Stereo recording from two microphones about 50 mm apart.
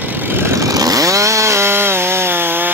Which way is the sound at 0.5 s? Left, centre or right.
Right.